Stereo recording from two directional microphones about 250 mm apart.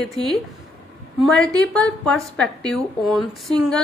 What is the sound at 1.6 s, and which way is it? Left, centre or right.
Speech, centre.